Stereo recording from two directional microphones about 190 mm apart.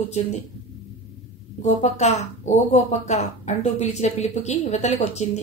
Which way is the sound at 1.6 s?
35° left (ahead or behind).